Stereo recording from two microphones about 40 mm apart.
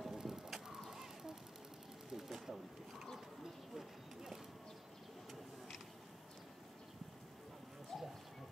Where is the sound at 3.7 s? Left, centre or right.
Centre.